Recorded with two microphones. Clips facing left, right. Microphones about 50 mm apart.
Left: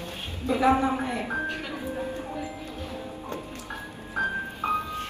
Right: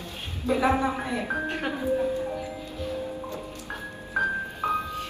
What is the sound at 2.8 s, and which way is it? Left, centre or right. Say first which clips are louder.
Music: right 4 dB; left.